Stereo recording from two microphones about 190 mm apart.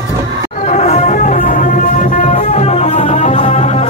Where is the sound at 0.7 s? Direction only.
35° left (ahead or behind).